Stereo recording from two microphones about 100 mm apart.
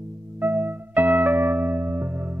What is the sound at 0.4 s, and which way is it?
Music, 20° right (ahead or behind).